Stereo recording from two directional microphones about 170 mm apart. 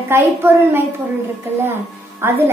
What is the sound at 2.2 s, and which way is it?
Speech, 15° right (ahead or behind).